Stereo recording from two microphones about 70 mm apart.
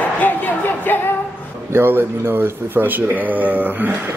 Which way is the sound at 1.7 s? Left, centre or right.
Right.